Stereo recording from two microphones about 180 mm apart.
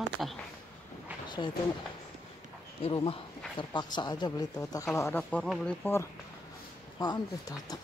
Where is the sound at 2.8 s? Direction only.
30° left (ahead or behind); by 5.4 s 15° left (ahead or behind).